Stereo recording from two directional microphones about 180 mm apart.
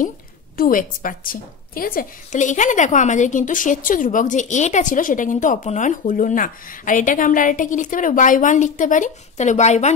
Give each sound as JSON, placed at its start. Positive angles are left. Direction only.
{"t": 0.6, "sound": "a woman's voice", "side_deg": 50}